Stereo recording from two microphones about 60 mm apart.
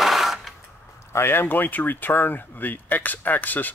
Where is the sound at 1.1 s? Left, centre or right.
Left.